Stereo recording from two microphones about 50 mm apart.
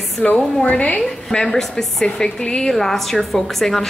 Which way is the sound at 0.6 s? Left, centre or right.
Left.